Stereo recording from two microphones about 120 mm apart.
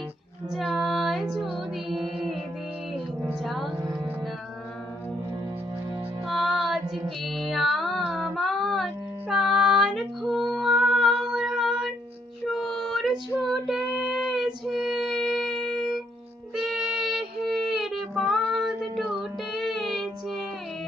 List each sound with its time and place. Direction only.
0.5 s music: centre (ahead or behind)
3.4 s music: centre (ahead or behind)
3.7 s music: 30° right (ahead or behind)
6.2 s music: centre (ahead or behind)
13.7 s female singing: 5° right (ahead or behind)
16.5 s music: 5° right (ahead or behind)